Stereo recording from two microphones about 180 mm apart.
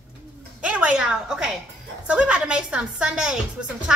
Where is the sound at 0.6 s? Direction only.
5° right (ahead or behind).